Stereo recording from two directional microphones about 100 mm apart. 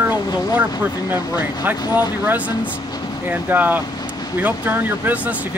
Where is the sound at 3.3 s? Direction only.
20° right (ahead or behind).